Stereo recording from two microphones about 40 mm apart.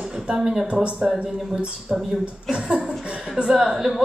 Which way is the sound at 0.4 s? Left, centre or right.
Centre.